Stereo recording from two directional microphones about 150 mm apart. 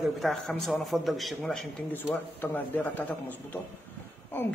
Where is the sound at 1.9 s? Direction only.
15° left (ahead or behind).